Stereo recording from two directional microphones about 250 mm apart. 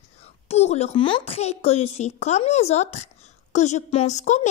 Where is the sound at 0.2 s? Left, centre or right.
Left.